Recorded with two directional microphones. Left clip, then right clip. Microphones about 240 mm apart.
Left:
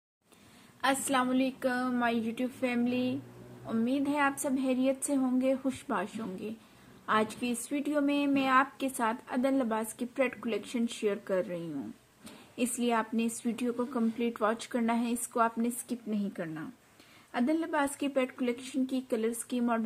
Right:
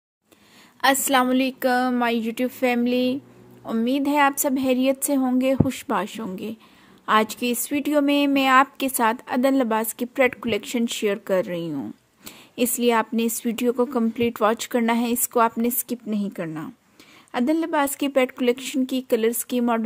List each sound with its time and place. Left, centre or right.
0.7 s a woman's voice: right